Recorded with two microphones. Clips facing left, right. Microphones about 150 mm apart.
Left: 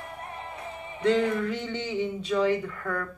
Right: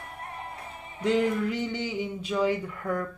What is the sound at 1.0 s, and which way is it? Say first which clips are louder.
Speech: left 1 dB; 10° right (ahead or behind).